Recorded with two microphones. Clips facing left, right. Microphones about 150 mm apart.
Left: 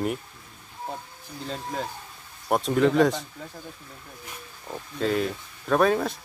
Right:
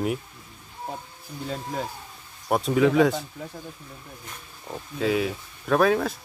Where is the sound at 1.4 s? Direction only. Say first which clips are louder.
Right 1 dB; 5° right (ahead or behind).